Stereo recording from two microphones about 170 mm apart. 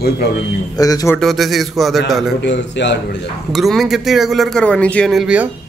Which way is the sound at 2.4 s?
90° left.